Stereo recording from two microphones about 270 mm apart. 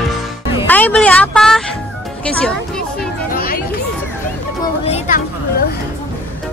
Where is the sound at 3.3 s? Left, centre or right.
Left.